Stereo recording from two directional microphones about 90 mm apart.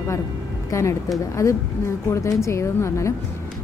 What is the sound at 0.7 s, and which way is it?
A woman's voice, 35° left (ahead or behind).